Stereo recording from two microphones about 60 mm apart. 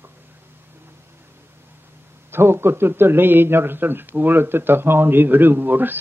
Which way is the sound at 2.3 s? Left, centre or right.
Right.